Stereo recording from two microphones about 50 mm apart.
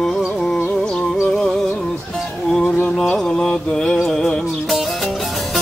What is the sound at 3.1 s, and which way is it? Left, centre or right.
Mantra, centre.